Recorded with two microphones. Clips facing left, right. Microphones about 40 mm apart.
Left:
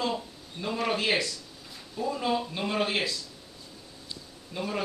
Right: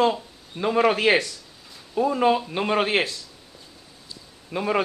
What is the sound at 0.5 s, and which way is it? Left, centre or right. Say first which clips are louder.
Speech: right 9 dB; right.